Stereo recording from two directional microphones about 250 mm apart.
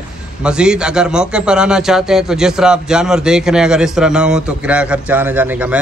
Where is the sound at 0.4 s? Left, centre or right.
Centre.